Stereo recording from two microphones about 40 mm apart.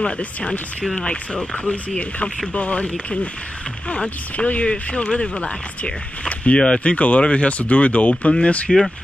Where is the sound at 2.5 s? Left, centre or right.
Left.